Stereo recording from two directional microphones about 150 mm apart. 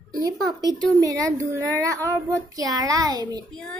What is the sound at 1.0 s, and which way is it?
A woman's voice, 25° right (ahead or behind).